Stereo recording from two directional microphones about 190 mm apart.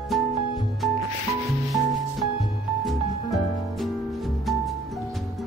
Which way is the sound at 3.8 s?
Centre (ahead or behind).